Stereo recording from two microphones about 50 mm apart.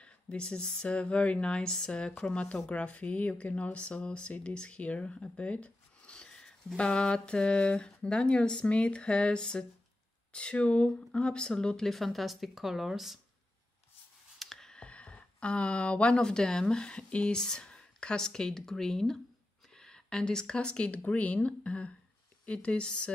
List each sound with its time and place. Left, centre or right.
0.0 s speech: centre
11.8 s speech: centre
14.4 s clicking: centre
14.8 s speech: left